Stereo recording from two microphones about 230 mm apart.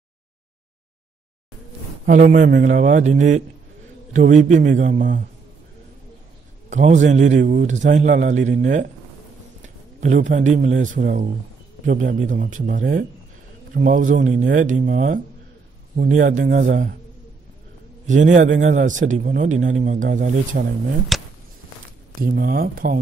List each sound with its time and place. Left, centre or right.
2.0 s a man's voice: right
6.7 s a man's voice: right
18.0 s a man's voice: right
21.1 s a sound: centre
22.2 s a man's voice: right